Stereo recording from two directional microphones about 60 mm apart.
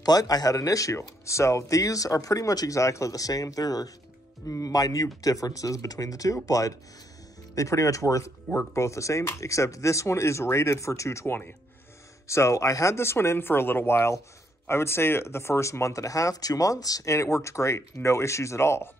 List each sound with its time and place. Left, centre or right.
0.0 s speech: left
4.5 s speech: left
12.9 s speech: left
17.1 s speech: left